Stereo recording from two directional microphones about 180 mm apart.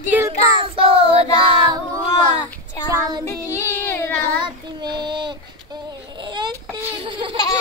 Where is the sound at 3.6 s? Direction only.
10° left (ahead or behind).